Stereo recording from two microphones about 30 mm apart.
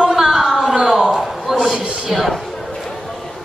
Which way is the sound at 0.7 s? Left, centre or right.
Centre.